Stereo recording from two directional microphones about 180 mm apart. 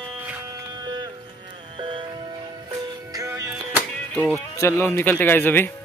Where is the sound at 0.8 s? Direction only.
25° right (ahead or behind).